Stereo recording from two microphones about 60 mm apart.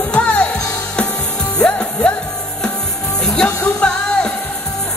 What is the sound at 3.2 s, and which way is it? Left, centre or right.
Music, left.